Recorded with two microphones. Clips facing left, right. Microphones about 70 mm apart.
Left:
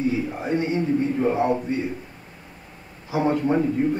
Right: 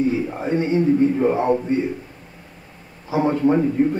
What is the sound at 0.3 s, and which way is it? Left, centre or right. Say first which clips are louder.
Speech: right 3 dB; right.